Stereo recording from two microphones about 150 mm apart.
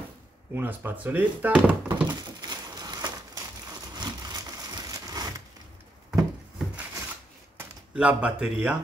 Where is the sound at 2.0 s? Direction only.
25° right (ahead or behind).